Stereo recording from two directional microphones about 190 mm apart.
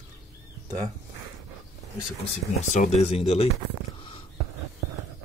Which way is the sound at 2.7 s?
35° left (ahead or behind).